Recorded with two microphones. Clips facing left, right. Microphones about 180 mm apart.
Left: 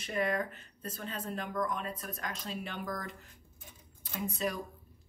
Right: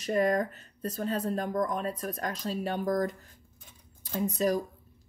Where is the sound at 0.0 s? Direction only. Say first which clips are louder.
Right 6 dB; 40° right (ahead or behind).